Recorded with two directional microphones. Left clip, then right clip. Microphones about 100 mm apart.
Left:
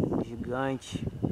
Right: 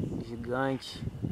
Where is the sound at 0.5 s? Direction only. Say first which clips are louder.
Right 1 dB; centre (ahead or behind).